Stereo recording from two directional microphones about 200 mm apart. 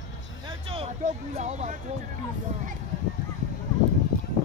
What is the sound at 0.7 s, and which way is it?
Speech, 30° right (ahead or behind).